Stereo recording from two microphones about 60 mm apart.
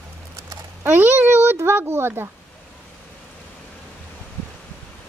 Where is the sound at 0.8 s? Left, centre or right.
Right.